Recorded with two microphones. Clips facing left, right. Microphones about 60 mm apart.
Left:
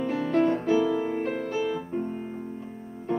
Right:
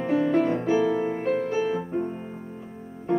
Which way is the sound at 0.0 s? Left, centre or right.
Right.